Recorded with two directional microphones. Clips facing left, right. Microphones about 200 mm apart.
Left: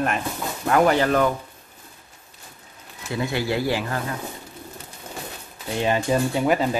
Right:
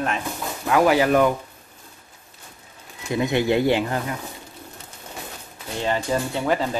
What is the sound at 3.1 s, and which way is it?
Speech, 20° right (ahead or behind).